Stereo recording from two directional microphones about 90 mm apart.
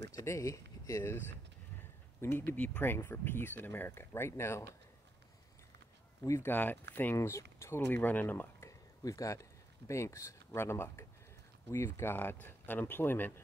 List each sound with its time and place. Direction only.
0.1 s speech: 35° left (ahead or behind)
2.2 s speech: 25° left (ahead or behind)
6.4 s speech: 20° left (ahead or behind)
7.2 s speech: 30° left (ahead or behind)
8.6 s speech: 40° left (ahead or behind)